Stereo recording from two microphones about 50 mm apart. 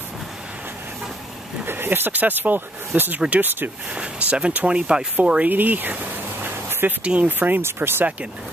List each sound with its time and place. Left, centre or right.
1.6 s speech: right
3.9 s speech: right
5.5 s speech: right
6.4 s a sound: right
7.0 s speech: right
7.2 s speech: right
7.6 s speech: right